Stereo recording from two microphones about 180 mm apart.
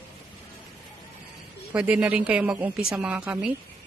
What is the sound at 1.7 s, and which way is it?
A woman's voice, 10° right (ahead or behind).